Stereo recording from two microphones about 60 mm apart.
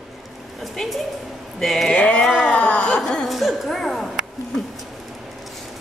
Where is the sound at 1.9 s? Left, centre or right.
Left.